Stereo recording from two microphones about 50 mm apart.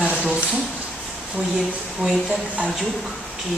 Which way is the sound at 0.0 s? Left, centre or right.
Right.